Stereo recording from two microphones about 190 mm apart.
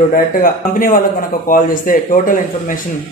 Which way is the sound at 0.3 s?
50° left (ahead or behind).